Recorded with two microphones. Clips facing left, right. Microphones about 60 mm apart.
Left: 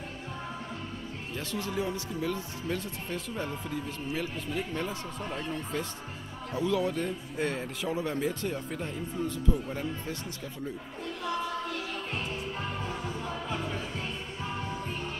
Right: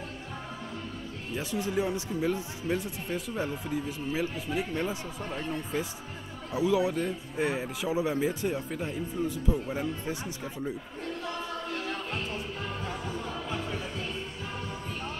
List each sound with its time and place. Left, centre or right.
1.3 s speech: centre
6.5 s speech: centre
11.7 s music: right